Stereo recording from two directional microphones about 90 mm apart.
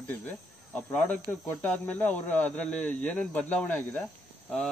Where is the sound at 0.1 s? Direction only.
15° left (ahead or behind).